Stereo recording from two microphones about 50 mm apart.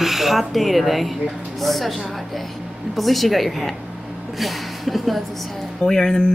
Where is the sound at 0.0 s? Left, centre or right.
Centre.